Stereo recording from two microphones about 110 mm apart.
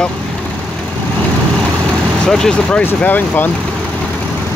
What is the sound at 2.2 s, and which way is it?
Speech, 5° left (ahead or behind).